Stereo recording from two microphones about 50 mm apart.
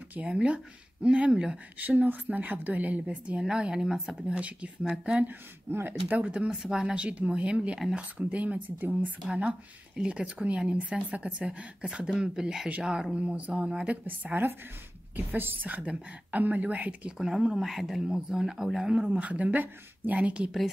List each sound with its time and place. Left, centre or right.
0.2 s speech: right
1.8 s a woman's voice: right
3.4 s speech: centre
4.3 s speech: right
5.2 s speech: right
6.2 s a woman's voice: right
9.9 s speech: centre
13.4 s a woman's voice: right
15.7 s speech: right
17.2 s speech: centre
18.9 s speech: right